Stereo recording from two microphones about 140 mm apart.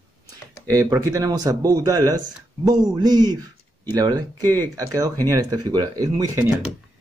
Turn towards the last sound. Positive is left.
turn(degrees=-25)  # may be behind; listen again after turning